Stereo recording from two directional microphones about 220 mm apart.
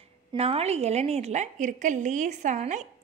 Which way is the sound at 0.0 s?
25° right (ahead or behind).